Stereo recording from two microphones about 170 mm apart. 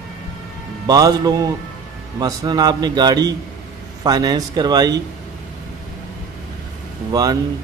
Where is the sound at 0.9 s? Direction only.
20° right (ahead or behind).